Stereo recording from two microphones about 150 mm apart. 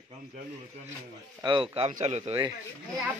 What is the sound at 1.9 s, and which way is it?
Speech, 45° right (ahead or behind).